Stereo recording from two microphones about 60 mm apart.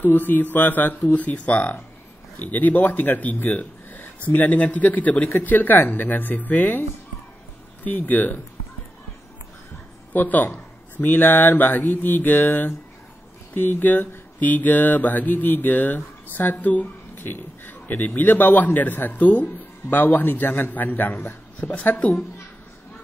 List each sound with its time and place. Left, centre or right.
0.0 s speech: left
1.1 s speech: left
10.1 s speech: left